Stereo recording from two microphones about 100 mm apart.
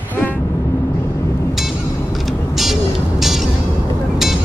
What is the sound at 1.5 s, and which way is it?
Music, centre (ahead or behind).